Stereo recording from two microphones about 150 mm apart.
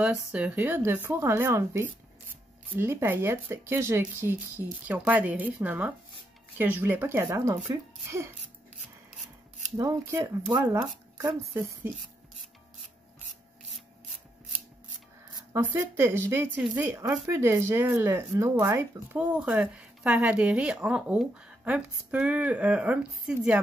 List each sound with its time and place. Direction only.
0.0 s speech: 5° right (ahead or behind)
9.8 s speech: 20° right (ahead or behind)
15.5 s speech: 15° right (ahead or behind)